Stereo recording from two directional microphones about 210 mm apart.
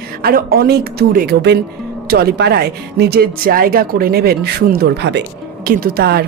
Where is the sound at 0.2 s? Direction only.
45° right (ahead or behind).